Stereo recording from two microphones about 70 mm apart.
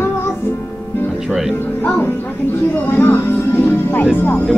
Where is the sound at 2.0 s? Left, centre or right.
Left.